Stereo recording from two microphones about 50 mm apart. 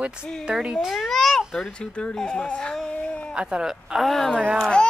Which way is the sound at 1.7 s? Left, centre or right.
Centre.